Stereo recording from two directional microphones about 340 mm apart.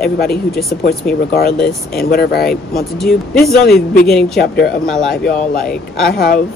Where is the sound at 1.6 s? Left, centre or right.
Centre.